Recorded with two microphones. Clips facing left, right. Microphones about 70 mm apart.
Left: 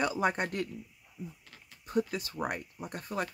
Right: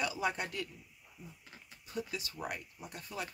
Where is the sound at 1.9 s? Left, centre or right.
Left.